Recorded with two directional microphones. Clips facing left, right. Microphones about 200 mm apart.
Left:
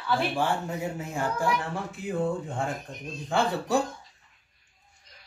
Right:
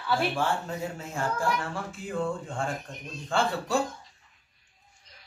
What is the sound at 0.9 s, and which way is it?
Speech, 15° left (ahead or behind).